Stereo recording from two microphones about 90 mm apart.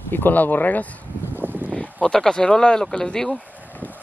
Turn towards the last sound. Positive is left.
turn(degrees=10)  # may be behind; listen again after turning